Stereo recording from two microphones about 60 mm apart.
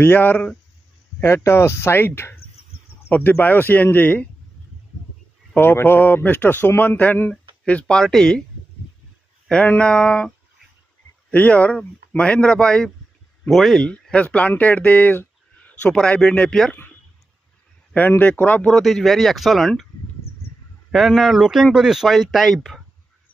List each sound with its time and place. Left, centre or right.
0.0 s speech: left
1.2 s speech: left
3.1 s speech: left
5.6 s speech: left
7.2 s a sound: left
7.9 s speech: centre
9.8 s speech: centre
11.3 s speech: left; by 13.8 s centre
14.1 s speech: left
17.9 s speech: left
18.7 s speech: centre
20.9 s speech: centre